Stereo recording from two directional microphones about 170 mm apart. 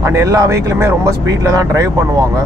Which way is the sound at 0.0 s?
20° right (ahead or behind).